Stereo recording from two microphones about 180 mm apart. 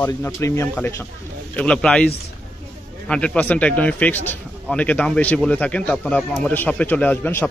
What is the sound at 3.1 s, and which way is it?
A man's voice, 5° left (ahead or behind).